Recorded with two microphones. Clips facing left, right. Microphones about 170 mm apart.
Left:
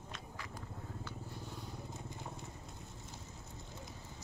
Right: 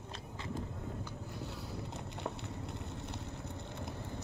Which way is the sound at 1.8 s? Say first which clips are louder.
Right 5 dB; 70° right (ahead or behind).